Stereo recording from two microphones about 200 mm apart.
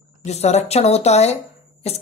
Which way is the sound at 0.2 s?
35° left (ahead or behind).